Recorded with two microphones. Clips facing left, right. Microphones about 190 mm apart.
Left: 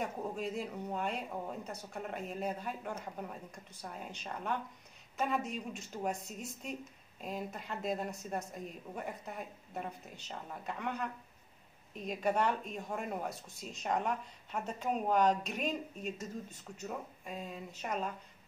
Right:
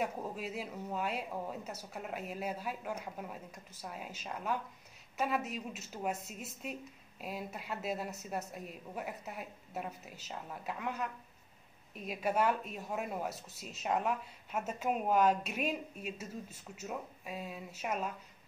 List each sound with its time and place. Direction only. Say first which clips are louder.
0.0 s a woman's voice: even; 5° right (ahead or behind)